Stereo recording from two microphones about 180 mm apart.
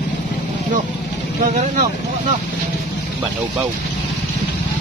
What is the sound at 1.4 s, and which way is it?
Speech, 45° right (ahead or behind).